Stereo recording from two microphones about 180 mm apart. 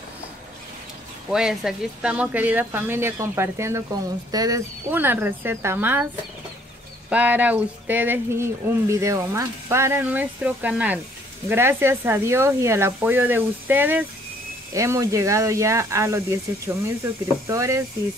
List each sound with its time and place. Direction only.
1.3 s speech: centre (ahead or behind)
7.1 s speech: 10° right (ahead or behind)